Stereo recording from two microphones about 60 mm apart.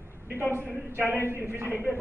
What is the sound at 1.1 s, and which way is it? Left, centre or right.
Speech, right.